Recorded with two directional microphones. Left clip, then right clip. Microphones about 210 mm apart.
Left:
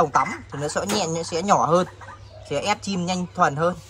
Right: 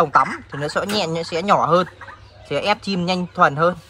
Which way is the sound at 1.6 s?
20° left (ahead or behind).